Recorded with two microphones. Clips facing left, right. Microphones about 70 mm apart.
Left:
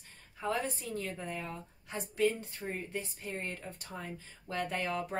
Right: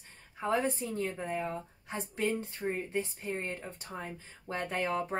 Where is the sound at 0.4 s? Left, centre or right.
Right.